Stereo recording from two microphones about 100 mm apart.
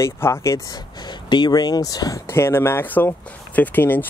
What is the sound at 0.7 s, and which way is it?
Speech, 50° left (ahead or behind).